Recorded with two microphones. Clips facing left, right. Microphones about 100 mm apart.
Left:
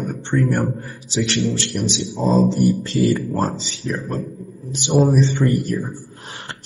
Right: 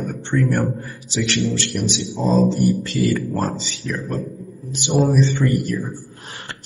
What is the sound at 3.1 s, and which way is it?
Speech, 20° left (ahead or behind).